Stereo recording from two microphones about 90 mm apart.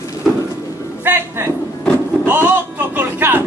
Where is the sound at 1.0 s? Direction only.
25° right (ahead or behind).